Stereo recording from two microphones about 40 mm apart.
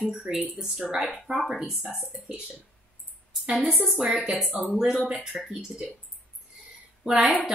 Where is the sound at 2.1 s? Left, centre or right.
Right.